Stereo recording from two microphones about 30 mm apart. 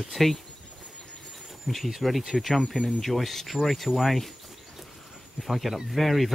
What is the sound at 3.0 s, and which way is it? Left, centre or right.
Speech, centre.